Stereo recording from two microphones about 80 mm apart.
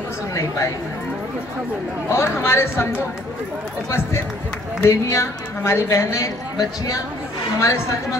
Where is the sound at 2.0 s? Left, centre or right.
Left.